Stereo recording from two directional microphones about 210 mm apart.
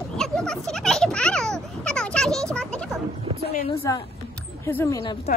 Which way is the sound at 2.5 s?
5° left (ahead or behind).